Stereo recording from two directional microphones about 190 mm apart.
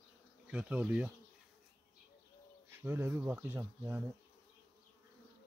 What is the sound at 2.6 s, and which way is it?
Speech, 10° right (ahead or behind).